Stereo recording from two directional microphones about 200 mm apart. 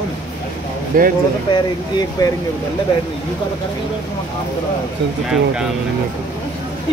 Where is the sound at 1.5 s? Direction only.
20° left (ahead or behind).